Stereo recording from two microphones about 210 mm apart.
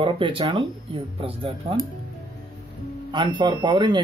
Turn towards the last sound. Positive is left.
turn(degrees=-20)  # may be behind; listen again after turning